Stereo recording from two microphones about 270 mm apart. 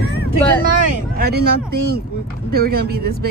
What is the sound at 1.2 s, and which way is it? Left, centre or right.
Speech, right.